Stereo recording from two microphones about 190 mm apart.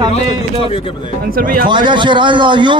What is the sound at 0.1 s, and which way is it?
Speech, 30° left (ahead or behind).